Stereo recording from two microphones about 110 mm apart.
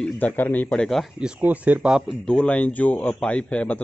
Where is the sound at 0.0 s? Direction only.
15° left (ahead or behind).